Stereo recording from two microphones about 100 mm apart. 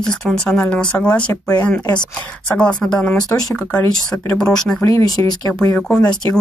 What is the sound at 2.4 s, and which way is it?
Speech, 10° left (ahead or behind).